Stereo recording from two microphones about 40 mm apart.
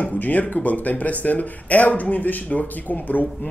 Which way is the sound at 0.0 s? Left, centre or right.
Left.